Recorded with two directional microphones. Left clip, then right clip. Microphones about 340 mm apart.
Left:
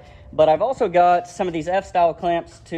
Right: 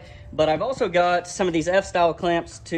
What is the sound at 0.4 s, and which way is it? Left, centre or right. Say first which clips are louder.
A man's voice: left 5 dB; centre.